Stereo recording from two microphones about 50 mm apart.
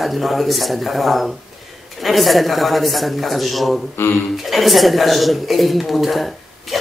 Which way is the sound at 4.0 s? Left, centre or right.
Left.